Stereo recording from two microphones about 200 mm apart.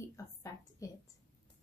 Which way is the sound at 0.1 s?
15° left (ahead or behind).